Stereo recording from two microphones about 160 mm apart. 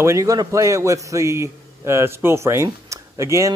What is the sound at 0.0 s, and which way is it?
A man's voice, 20° right (ahead or behind).